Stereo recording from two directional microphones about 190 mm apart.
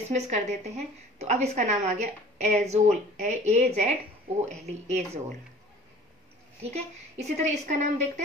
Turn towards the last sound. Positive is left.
turn(degrees=-40)  # may be behind; listen again after turning